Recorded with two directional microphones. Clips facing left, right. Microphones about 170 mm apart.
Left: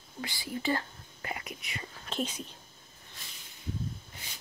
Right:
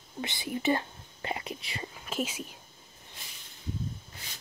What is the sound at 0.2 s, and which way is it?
Speech, 20° right (ahead or behind).